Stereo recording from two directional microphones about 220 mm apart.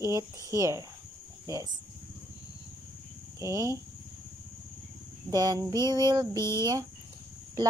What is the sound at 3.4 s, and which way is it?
Speech, 15° right (ahead or behind).